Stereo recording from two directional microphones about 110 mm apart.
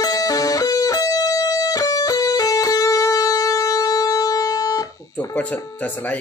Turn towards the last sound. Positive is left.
turn(degrees=15)  # may be behind; listen again after turning